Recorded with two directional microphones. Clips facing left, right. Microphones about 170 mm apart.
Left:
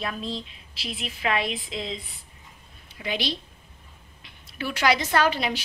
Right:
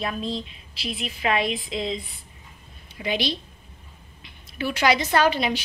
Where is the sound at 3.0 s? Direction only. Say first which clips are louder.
Right 3 dB; centre (ahead or behind).